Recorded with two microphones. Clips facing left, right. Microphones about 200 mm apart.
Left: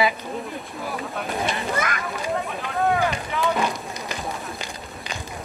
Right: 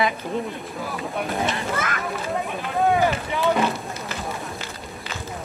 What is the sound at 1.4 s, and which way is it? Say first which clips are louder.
Children playing: left 3 dB; 15° left (ahead or behind).